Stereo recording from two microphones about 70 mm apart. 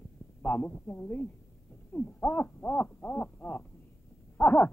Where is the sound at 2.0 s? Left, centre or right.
Left.